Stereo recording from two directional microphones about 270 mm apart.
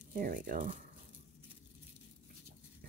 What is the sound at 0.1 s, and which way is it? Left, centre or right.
Speech, right.